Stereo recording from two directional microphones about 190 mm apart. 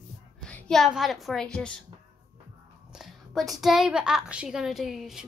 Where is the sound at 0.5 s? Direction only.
Centre (ahead or behind).